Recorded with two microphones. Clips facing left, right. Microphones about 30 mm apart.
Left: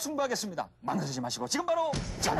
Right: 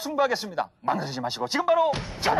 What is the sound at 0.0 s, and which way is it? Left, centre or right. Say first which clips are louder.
Speech: right 7 dB; right.